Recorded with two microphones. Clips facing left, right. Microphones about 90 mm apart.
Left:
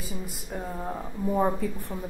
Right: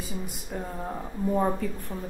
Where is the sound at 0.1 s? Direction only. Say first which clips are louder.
Left 1 dB; centre (ahead or behind).